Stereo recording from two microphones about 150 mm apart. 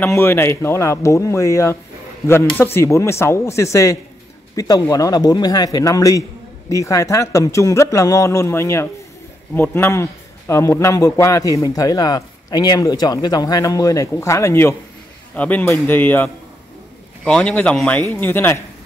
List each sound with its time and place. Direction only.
0.0 s a man's voice: 15° left (ahead or behind)